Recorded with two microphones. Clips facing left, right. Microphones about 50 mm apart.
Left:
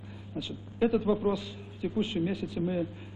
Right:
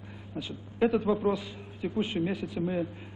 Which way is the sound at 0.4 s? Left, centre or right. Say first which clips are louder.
Right 1 dB; right.